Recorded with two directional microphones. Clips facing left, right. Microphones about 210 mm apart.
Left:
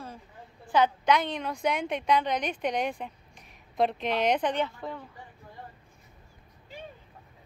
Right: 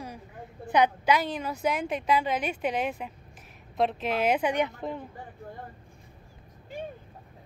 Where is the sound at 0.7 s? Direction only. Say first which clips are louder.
Right 1 dB; 15° right (ahead or behind).